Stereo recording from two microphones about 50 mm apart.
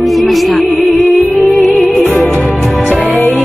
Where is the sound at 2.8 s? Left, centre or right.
Left.